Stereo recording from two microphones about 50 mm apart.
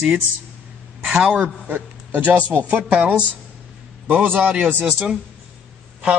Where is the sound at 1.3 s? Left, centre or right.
Right.